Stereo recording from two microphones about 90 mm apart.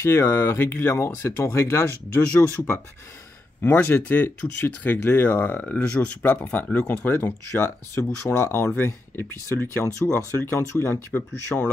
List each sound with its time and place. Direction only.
0.0 s speech: 25° left (ahead or behind)